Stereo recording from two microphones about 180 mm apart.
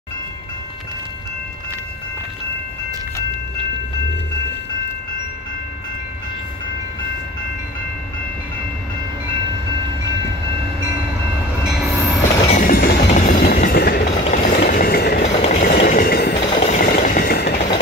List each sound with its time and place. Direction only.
11.6 s train: centre (ahead or behind)
12.4 s train: 45° left (ahead or behind)
14.2 s vehicle: 45° left (ahead or behind); by 15.2 s 65° left (ahead or behind)
15.2 s vehicle: 40° left (ahead or behind)
15.8 s train: 50° left (ahead or behind)
16.5 s a sound: 35° left (ahead or behind)
16.8 s vehicle: 55° left (ahead or behind)